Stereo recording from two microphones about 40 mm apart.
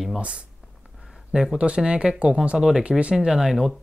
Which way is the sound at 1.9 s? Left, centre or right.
Right.